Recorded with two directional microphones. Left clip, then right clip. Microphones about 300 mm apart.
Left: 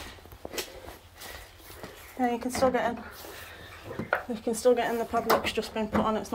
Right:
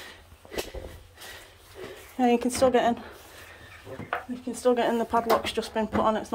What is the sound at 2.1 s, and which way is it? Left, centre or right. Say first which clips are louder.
Speech: right 5 dB; right.